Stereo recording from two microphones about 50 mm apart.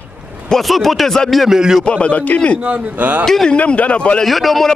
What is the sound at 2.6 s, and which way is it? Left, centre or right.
Speech, right.